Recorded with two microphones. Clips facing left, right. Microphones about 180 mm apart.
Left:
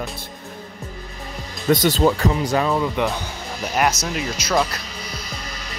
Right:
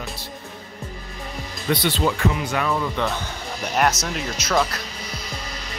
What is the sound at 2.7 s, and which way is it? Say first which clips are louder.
Speech: left 3 dB; 20° left (ahead or behind).